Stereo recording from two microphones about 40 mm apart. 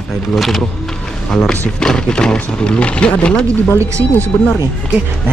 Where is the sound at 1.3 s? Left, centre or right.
Left.